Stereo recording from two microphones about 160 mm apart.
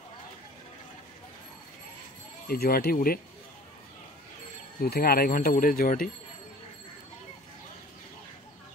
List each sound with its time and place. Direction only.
2.4 s speech: 70° left (ahead or behind)
4.8 s speech: 75° left (ahead or behind)